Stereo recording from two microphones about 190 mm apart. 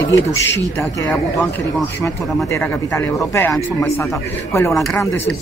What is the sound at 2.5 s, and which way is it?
Speech, 15° left (ahead or behind).